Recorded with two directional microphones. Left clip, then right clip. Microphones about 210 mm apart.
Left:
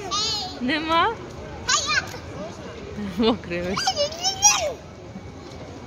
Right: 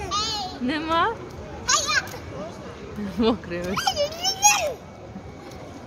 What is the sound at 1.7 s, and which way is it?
Children playing, 50° right (ahead or behind).